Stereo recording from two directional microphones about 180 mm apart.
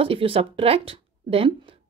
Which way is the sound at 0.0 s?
30° right (ahead or behind).